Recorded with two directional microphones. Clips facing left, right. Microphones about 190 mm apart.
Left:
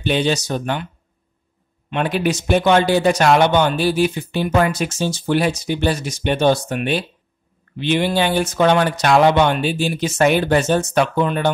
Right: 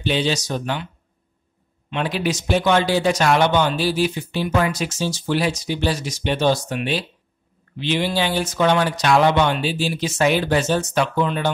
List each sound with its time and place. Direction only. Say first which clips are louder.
0.0 s speech: left 3 dB; 55° left (ahead or behind)
1.9 s speech: left 3 dB; 55° left (ahead or behind)